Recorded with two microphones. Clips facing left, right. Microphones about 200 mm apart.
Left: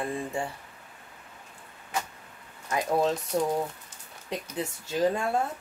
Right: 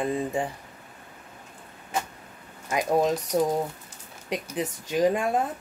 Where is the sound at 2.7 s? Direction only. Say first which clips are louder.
Right 3 dB; 20° right (ahead or behind).